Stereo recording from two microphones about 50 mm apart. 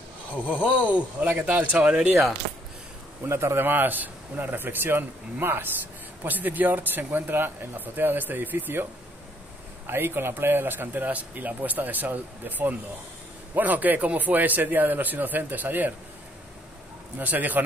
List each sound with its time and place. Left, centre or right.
0.3 s speech: left
0.8 s speech: right
3.3 s a man's voice: right
3.6 s speech: right
6.2 s speech: right
9.8 s speech: right
17.2 s speech: right